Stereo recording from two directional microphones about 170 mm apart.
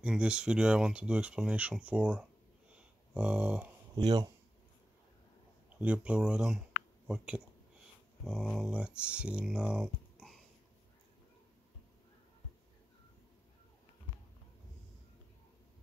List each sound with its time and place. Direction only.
0.0 s speech: 5° right (ahead or behind)
4.0 s speech: 25° right (ahead or behind)
5.8 s speech: 5° right (ahead or behind)